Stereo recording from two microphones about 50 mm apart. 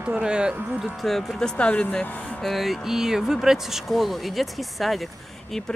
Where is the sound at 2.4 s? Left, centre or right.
Centre.